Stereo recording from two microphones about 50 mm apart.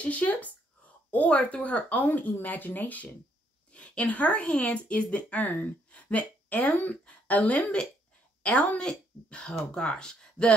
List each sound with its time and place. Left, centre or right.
0.0 s a woman's voice: left